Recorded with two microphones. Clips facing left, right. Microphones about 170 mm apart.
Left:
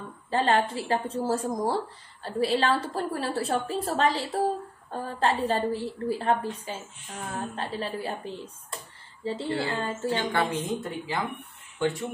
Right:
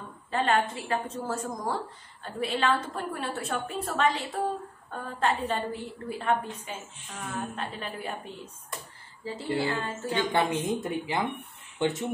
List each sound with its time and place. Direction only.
0.3 s a woman's voice: 30° left (ahead or behind)
10.3 s a woman's voice: 15° right (ahead or behind)